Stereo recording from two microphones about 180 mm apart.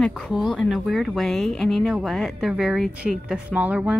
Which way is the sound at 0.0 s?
5° left (ahead or behind).